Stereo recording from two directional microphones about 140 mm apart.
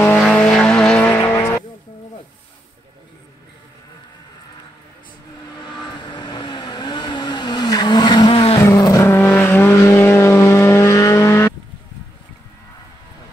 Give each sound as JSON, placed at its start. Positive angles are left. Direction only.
{"t": 0.2, "sound": "vehicle", "side_deg": 5}
{"t": 5.9, "sound": "vehicle", "side_deg": 35}
{"t": 8.5, "sound": "vehicle", "side_deg": 20}